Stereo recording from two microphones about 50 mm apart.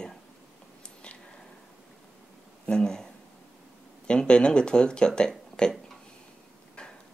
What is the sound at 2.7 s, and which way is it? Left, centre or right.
Speech, centre.